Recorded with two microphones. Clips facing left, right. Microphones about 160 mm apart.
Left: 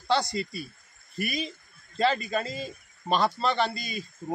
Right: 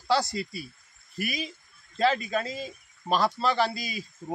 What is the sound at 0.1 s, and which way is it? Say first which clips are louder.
A man's voice: even; 5° right (ahead or behind).